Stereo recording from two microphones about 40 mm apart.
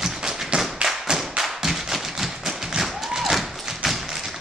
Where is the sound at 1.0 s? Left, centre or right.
Centre.